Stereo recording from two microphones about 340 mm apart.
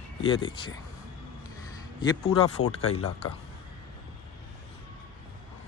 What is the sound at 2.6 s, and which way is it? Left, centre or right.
Speech, left.